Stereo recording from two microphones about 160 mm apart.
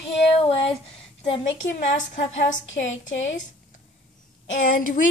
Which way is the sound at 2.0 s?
50° left (ahead or behind).